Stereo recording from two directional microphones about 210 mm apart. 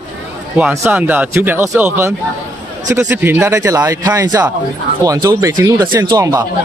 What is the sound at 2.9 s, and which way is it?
Speech, 10° right (ahead or behind).